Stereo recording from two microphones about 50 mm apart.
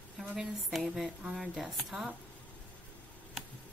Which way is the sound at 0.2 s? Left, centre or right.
Centre.